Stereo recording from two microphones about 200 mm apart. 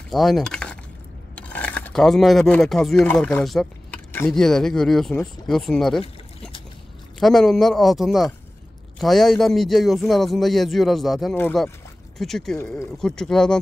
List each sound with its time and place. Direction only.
0.1 s speech: centre (ahead or behind)